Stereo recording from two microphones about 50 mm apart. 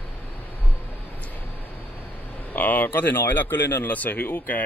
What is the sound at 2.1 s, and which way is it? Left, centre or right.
Speech, left.